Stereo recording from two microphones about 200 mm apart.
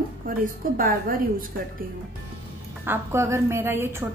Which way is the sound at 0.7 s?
45° right (ahead or behind).